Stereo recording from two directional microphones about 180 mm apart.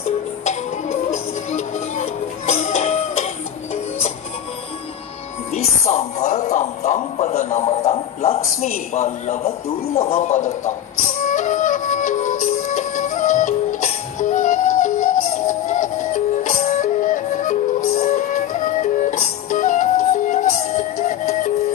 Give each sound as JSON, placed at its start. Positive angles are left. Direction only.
{"t": 1.5, "sound": "music", "side_deg": 40}
{"t": 5.5, "sound": "music", "side_deg": 35}
{"t": 9.9, "sound": "a man's voice", "side_deg": 35}
{"t": 11.2, "sound": "music", "side_deg": 45}